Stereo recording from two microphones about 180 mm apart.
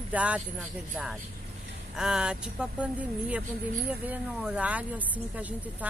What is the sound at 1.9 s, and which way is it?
A woman's voice, 5° right (ahead or behind).